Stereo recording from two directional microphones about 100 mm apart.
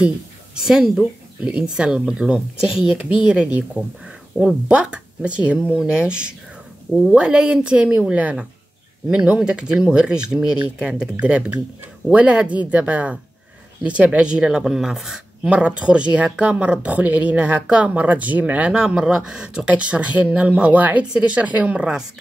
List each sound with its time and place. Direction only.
0.6 s speech: 5° right (ahead or behind)